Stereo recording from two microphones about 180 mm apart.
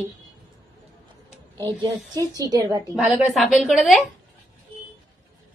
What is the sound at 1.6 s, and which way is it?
A woman's voice, 20° right (ahead or behind).